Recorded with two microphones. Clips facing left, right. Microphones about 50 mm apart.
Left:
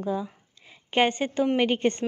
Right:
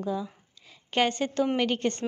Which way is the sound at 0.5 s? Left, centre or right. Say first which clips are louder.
Left 3 dB; left.